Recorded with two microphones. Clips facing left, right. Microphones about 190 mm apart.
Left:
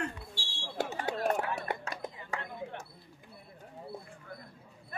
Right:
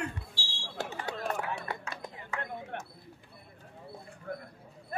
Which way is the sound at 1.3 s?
35° left (ahead or behind).